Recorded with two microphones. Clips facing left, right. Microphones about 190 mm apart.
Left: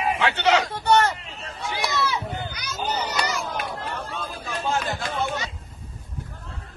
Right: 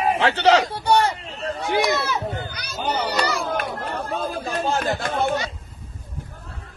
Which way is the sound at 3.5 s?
55° right (ahead or behind).